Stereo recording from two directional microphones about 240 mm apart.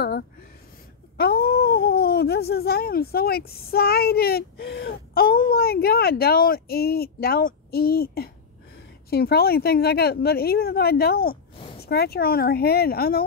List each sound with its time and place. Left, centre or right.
1.1 s speech: left